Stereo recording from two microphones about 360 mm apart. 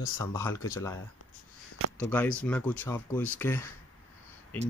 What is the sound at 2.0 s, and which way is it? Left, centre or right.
Speech, centre.